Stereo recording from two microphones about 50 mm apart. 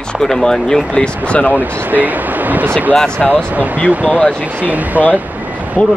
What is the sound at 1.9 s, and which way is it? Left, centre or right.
Speech, right.